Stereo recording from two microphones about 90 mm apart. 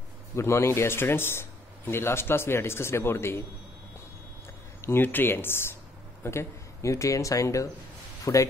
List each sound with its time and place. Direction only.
0.4 s a man's voice: 30° left (ahead or behind)
4.8 s a man's voice: 25° left (ahead or behind)